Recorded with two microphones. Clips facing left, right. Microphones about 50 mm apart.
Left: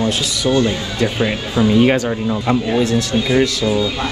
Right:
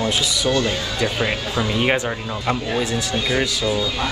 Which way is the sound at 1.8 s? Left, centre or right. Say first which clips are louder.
Left 5 dB; centre.